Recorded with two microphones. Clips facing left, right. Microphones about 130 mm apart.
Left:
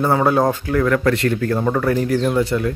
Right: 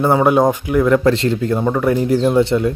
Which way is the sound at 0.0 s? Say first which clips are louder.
Right 3 dB; 20° right (ahead or behind).